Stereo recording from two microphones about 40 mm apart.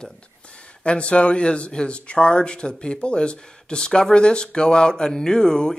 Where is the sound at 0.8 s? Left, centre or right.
Left.